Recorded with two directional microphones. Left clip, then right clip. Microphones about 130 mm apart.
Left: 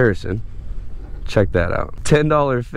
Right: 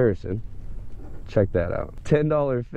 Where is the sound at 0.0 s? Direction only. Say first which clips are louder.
Left 5 dB; 35° left (ahead or behind).